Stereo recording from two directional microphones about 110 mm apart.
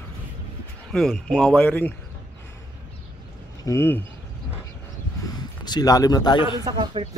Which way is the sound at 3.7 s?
20° left (ahead or behind).